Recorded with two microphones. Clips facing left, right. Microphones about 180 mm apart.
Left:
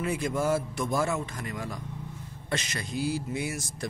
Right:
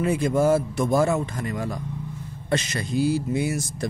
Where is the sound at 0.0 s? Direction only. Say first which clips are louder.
Right 7 dB; 30° right (ahead or behind).